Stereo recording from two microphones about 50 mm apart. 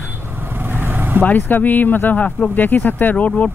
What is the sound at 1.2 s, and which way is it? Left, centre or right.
Speech, left.